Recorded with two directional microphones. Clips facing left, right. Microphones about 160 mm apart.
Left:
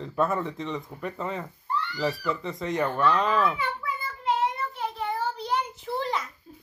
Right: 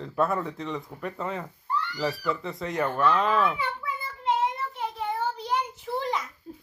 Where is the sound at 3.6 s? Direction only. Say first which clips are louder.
Left 1 dB; 20° right (ahead or behind).